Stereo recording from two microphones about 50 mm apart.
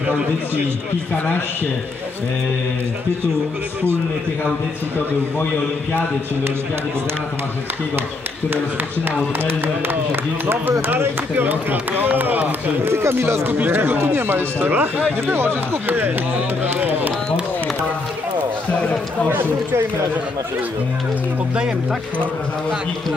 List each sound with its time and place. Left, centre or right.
9.4 s speech: right
11.0 s speech: right
12.9 s speech: right
13.5 s speech: right
19.3 s speech: right